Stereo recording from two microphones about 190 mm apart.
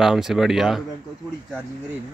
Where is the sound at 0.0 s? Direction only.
Centre (ahead or behind).